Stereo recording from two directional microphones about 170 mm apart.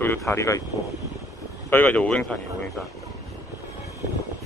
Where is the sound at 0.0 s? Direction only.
15° left (ahead or behind).